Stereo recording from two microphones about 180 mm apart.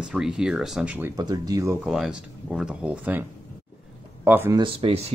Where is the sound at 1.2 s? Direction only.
20° right (ahead or behind).